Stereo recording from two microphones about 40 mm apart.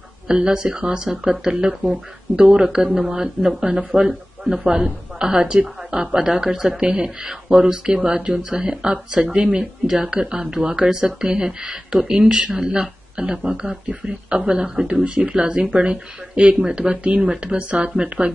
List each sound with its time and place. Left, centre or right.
0.5 s speech: centre